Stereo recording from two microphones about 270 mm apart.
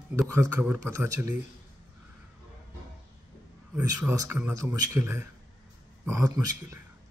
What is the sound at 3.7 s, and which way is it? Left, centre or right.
Speech, centre.